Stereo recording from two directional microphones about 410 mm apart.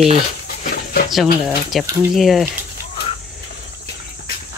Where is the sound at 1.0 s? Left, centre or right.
Centre.